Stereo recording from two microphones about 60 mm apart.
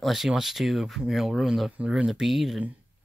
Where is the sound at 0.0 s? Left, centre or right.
Centre.